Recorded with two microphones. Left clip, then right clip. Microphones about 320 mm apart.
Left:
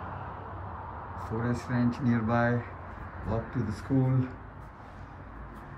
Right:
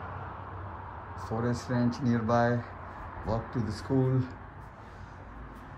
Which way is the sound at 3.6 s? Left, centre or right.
Centre.